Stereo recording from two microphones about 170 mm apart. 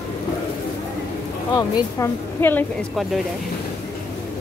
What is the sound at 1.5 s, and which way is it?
Speech, 20° left (ahead or behind).